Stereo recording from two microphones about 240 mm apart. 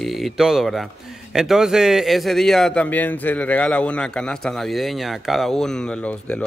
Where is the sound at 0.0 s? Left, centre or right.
Centre.